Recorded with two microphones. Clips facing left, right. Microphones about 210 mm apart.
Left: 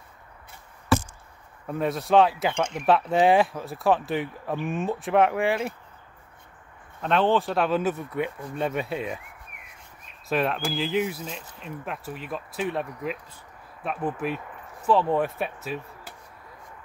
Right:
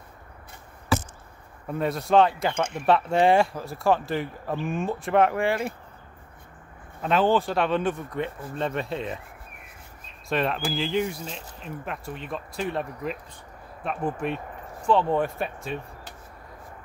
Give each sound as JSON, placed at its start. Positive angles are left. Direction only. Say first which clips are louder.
{"t": 1.7, "sound": "speech", "louder": "even", "side_deg": 0}
{"t": 7.0, "sound": "speech", "louder": "even", "side_deg": 0}
{"t": 10.2, "sound": "speech", "louder": "even", "side_deg": 0}